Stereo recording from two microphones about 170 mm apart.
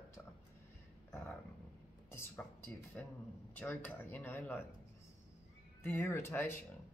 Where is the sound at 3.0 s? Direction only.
10° left (ahead or behind).